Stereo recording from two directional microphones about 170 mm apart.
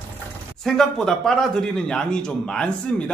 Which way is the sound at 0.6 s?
Centre (ahead or behind).